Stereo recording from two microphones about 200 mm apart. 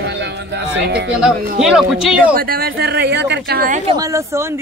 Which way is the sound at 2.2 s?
45° right (ahead or behind).